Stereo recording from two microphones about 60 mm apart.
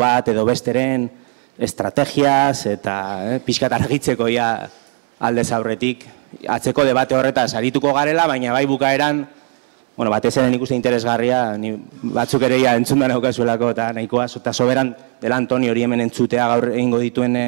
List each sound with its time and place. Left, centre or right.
0.0 s speech: right
2.8 s speech: right